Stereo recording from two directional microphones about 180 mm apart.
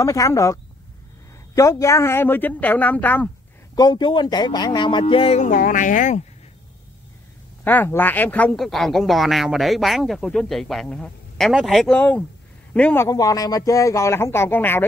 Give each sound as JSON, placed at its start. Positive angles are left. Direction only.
{"t": 0.0, "sound": "a man's voice", "side_deg": 20}
{"t": 3.7, "sound": "speech", "side_deg": 20}
{"t": 5.5, "sound": "speech", "side_deg": 50}
{"t": 7.6, "sound": "a man's voice", "side_deg": 10}